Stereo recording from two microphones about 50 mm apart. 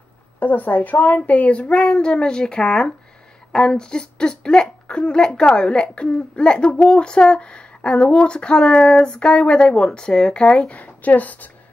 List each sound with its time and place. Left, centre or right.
0.4 s a child's voice: left